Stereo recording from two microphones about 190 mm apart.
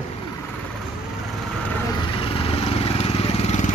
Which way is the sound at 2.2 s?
30° left (ahead or behind).